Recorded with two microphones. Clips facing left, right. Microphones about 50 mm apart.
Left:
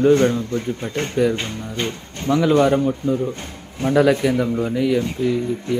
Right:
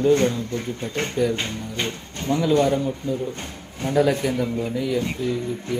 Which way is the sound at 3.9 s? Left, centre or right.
Left.